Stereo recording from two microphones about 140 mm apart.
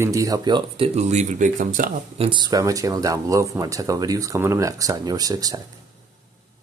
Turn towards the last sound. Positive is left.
turn(degrees=-25)  # may be behind; listen again after turning